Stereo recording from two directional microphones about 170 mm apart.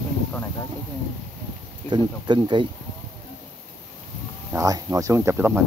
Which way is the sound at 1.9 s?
25° right (ahead or behind).